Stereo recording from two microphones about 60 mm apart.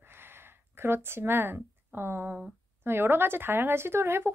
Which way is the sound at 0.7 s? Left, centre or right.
Right.